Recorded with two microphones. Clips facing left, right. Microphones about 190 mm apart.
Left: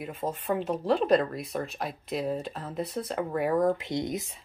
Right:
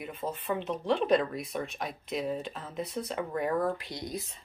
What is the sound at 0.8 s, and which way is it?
Speech, centre (ahead or behind).